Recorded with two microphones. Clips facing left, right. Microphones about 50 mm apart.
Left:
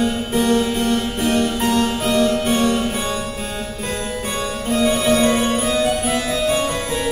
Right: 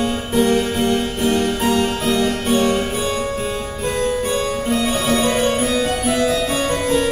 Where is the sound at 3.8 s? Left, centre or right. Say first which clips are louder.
Right 7 dB; centre.